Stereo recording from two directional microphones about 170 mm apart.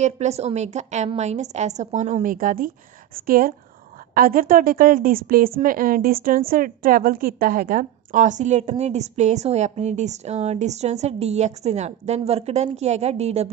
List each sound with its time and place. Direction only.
0.0 s a woman's voice: 40° right (ahead or behind)